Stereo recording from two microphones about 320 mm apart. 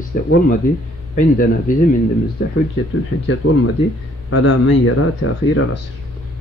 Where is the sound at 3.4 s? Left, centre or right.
Left.